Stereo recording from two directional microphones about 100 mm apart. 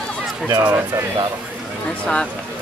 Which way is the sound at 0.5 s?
40° right (ahead or behind).